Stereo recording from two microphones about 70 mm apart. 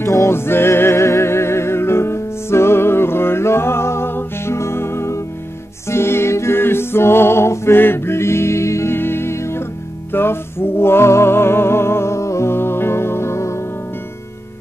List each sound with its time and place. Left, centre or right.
0.0 s music: left